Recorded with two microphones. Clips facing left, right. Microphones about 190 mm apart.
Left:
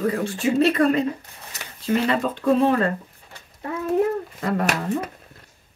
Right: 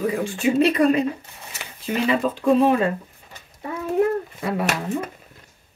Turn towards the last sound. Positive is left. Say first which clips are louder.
# left 1 dB
turn(degrees=-10)  # may be behind; listen again after turning